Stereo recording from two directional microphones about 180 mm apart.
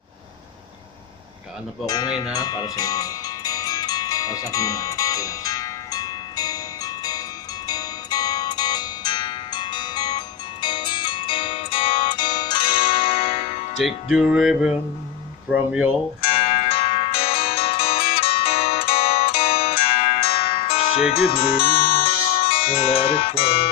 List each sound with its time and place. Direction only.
1.9 s speech: 25° left (ahead or behind)
2.3 s zither: 20° left (ahead or behind); by 13.8 s 35° left (ahead or behind)
13.8 s music: centre (ahead or behind)
15.5 s speech: 5° right (ahead or behind)
16.2 s music: 30° left (ahead or behind)
22.4 s speech: 30° left (ahead or behind)